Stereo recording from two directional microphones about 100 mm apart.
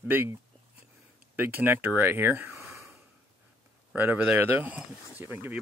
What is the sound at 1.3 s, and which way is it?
Speech, 20° right (ahead or behind).